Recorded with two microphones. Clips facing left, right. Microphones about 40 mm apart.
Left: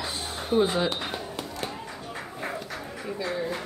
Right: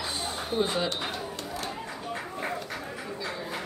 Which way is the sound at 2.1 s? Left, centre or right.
Centre.